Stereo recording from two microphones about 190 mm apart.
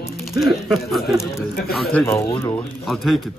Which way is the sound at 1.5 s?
55° left (ahead or behind).